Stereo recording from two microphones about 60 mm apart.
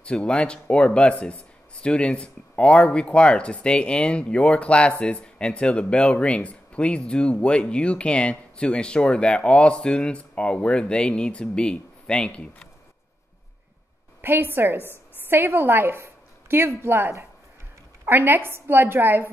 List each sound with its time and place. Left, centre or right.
0.0 s speech: centre
14.2 s a woman's voice: right
16.0 s chopping: right
18.0 s a woman's voice: right